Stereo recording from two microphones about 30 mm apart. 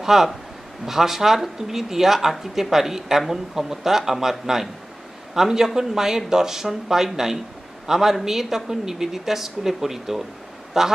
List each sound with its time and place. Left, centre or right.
0.0 s a man's voice: centre